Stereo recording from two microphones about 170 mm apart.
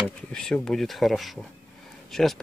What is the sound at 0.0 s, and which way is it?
Speech, 5° left (ahead or behind).